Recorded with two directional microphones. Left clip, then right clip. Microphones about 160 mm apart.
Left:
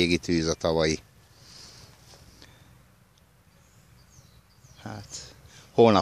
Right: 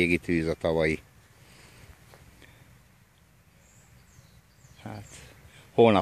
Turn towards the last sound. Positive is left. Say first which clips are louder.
# left 1 dB
turn(degrees=15)  # may be behind; listen again after turning